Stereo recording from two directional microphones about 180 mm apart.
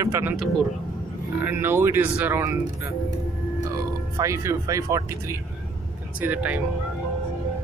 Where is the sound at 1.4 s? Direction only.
10° right (ahead or behind).